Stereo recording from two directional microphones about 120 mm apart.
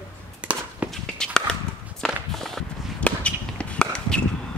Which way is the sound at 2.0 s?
Centre (ahead or behind).